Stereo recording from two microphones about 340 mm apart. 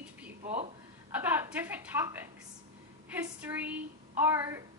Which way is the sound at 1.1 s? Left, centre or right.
Centre.